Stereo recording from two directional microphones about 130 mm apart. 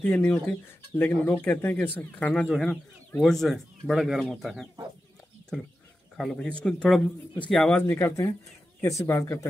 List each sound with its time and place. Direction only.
0.0 s speech: 10° left (ahead or behind)
7.8 s speech: 20° left (ahead or behind)